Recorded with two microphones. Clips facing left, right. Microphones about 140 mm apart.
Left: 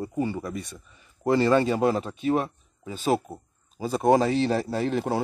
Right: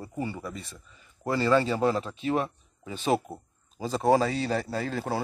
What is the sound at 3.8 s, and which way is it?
Speech, 10° left (ahead or behind).